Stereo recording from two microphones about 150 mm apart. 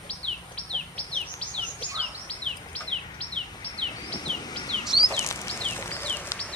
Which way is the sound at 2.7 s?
10° left (ahead or behind).